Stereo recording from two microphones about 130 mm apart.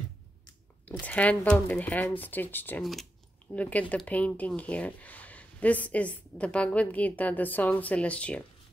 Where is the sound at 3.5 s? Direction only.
10° left (ahead or behind).